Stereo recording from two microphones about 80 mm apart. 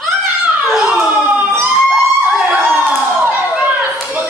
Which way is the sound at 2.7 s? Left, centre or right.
Right.